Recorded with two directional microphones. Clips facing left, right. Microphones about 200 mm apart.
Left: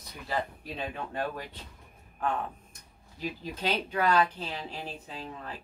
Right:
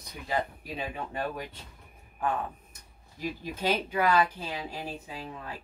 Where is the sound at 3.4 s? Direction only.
10° right (ahead or behind).